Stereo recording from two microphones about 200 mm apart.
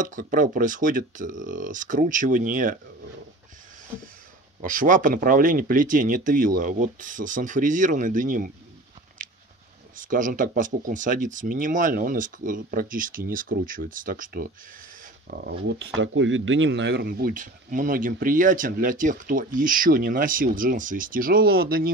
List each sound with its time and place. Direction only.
0.0 s speech: 40° right (ahead or behind)
4.6 s speech: 40° right (ahead or behind)
9.9 s speech: 40° right (ahead or behind)